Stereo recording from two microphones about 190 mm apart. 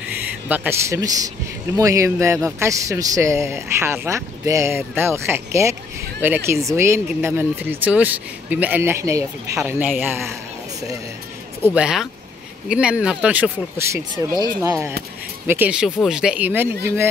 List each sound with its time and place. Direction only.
0.5 s a man's voice: 15° right (ahead or behind)
11.7 s speech: 5° right (ahead or behind)
14.1 s speech: 20° left (ahead or behind)
14.6 s a man's voice: 15° right (ahead or behind)